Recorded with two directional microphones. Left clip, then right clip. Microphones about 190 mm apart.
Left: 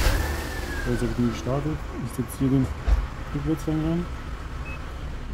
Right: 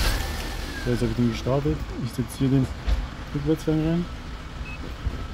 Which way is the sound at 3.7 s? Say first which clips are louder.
Right 3 dB; 45° right (ahead or behind).